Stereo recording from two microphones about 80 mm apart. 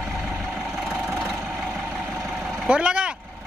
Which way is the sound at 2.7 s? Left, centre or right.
Centre.